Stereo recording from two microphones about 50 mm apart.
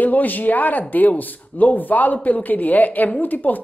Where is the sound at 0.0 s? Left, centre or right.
Left.